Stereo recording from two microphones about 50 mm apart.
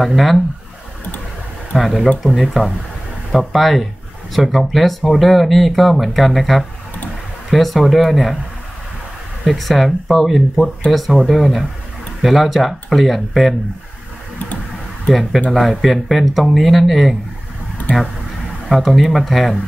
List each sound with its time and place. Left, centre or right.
0.0 s speech: centre
1.7 s speech: centre
9.4 s speech: centre
15.0 s speech: centre
17.9 s speech: left
18.7 s speech: centre